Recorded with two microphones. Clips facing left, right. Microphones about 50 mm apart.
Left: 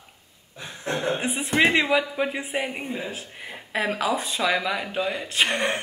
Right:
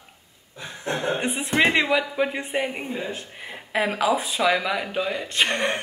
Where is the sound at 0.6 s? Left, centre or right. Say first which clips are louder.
Right 1 dB; right.